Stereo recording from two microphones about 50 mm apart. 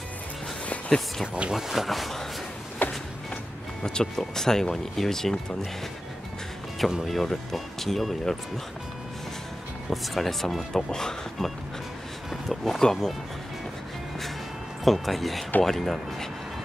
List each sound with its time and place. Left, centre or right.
0.8 s speech: centre
1.2 s speech: right
1.5 s speech: centre
2.8 s walk: left
3.8 s speech: centre
7.1 s speech: centre
9.8 s speech: centre
12.4 s speech: centre
14.9 s speech: centre